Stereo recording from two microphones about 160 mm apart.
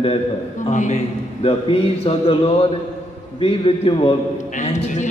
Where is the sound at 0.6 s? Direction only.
50° left (ahead or behind).